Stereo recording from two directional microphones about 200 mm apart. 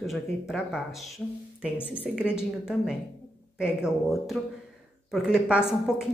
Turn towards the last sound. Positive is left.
turn(degrees=0)  # may be behind; listen again after turning